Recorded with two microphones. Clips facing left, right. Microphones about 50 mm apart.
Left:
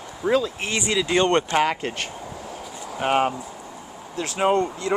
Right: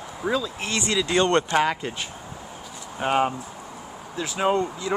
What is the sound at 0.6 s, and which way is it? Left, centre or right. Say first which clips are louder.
Speech: left 1 dB; centre.